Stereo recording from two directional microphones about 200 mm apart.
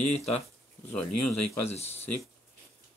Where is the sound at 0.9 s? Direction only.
5° left (ahead or behind).